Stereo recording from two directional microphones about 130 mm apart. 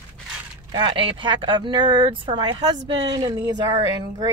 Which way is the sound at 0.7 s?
35° right (ahead or behind).